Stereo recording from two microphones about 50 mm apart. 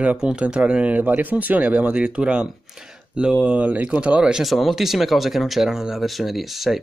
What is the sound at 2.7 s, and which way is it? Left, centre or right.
Speech, centre.